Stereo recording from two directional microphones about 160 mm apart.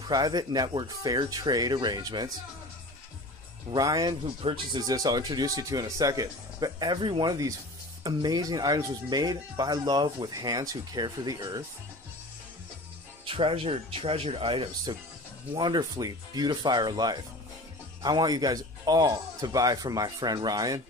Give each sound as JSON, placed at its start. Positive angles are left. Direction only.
{"t": 0.1, "sound": "speech", "side_deg": -25}
{"t": 3.7, "sound": "speech", "side_deg": -25}
{"t": 13.2, "sound": "speech", "side_deg": -35}